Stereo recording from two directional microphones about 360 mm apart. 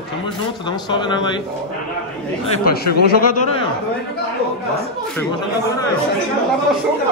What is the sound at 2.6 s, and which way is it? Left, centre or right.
Speech, left.